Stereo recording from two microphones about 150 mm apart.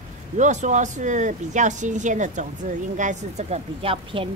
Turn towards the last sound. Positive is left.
turn(degrees=-35)  # may be behind; listen again after turning